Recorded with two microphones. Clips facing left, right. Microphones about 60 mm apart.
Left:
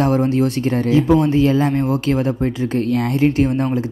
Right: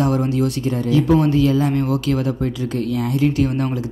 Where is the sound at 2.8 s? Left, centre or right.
Left.